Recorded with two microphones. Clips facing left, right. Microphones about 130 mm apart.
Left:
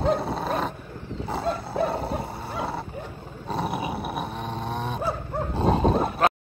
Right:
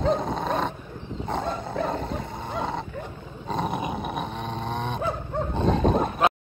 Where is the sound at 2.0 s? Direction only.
35° left (ahead or behind).